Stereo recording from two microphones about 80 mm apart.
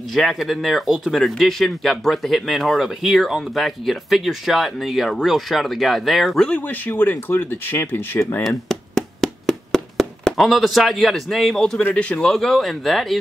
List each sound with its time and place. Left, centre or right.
0.1 s speech: centre
6.5 s speech: left
8.5 s a sound: centre
11.8 s speech: centre